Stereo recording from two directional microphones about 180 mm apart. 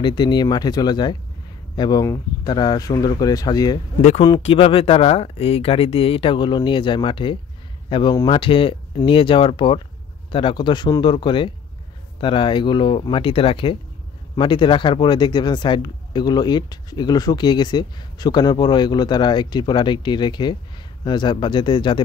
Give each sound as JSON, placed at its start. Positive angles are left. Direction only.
{"t": 0.0, "sound": "speech", "side_deg": 25}